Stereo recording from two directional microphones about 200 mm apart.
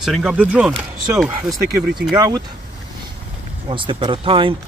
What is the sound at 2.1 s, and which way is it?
Speech, 20° right (ahead or behind).